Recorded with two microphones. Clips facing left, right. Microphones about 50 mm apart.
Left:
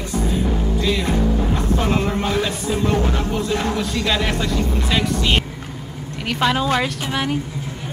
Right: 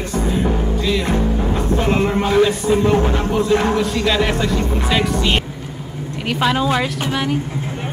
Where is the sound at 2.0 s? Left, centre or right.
Right.